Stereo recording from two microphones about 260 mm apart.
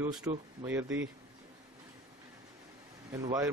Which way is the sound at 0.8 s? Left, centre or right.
Right.